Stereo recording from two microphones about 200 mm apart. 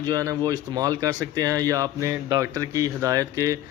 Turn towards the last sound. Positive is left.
turn(degrees=-15)  # may be behind; listen again after turning